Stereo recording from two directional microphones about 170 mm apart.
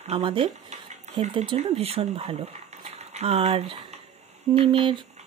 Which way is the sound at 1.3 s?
35° right (ahead or behind).